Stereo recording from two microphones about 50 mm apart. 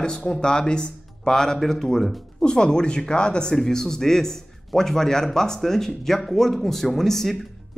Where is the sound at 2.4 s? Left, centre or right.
Centre.